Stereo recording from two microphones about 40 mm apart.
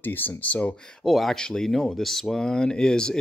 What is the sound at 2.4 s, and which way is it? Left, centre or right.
Speech, centre.